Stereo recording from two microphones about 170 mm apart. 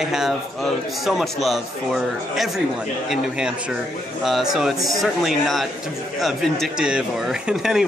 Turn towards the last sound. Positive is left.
turn(degrees=-5)  # may be behind; listen again after turning